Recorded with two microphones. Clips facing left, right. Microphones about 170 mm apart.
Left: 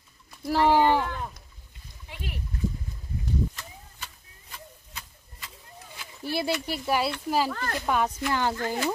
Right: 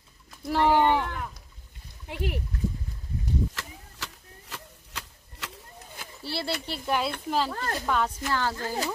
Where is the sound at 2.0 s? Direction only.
60° right (ahead or behind).